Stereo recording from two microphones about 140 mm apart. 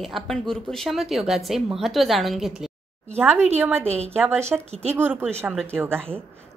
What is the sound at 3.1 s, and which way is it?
A woman's voice, 15° right (ahead or behind).